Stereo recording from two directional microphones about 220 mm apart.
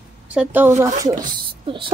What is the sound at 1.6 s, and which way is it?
Speech, 25° right (ahead or behind).